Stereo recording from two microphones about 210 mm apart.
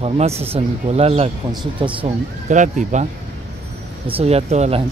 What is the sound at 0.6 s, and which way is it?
Speech, 30° right (ahead or behind).